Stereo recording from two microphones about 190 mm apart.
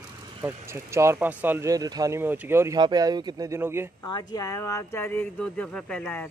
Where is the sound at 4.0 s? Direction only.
20° left (ahead or behind).